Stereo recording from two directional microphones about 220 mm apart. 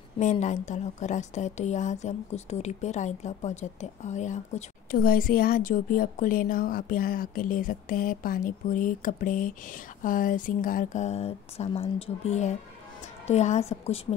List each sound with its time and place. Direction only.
0.2 s a woman's voice: 35° left (ahead or behind)